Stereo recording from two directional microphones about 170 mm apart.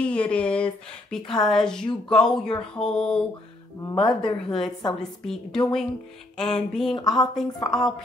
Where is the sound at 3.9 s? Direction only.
30° left (ahead or behind).